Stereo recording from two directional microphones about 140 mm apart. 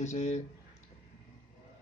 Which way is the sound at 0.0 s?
55° left (ahead or behind).